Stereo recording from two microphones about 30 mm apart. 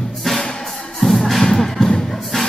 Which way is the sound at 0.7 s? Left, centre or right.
Centre.